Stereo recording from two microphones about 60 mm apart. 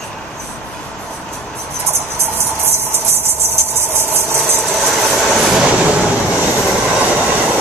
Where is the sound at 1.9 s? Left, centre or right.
Right.